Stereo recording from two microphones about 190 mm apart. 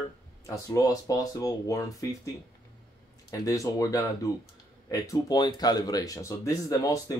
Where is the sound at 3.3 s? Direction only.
15° left (ahead or behind).